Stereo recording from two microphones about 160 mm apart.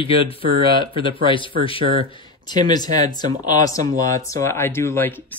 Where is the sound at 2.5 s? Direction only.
25° left (ahead or behind).